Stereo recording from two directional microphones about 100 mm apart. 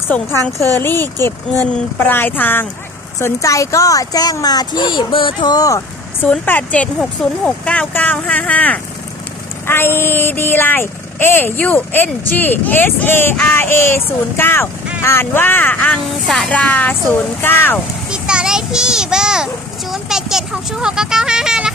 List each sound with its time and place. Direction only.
0.1 s speech: 25° left (ahead or behind)
3.2 s speech: 30° left (ahead or behind); by 5.5 s 55° left (ahead or behind)
5.5 s speech: 40° left (ahead or behind)
6.2 s speech: 15° left (ahead or behind)
16.3 s speech: 5° left (ahead or behind)
18.1 s a sound: 10° right (ahead or behind)